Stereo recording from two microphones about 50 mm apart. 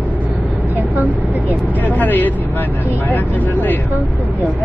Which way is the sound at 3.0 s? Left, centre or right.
Left.